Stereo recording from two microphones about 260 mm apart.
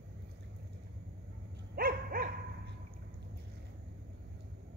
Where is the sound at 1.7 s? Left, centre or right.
Right.